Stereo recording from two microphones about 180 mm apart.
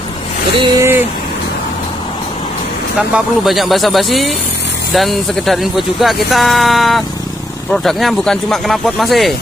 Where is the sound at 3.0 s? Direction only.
5° right (ahead or behind).